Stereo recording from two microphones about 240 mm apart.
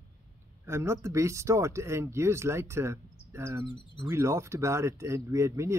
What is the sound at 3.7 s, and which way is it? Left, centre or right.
Speech, right.